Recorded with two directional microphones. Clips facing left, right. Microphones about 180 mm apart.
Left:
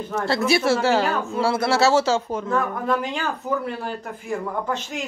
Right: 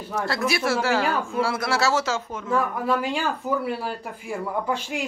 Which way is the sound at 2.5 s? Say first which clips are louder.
Right 1 dB; 5° right (ahead or behind).